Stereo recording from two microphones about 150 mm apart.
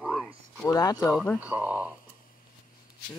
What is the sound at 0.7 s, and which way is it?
Speech, 25° left (ahead or behind).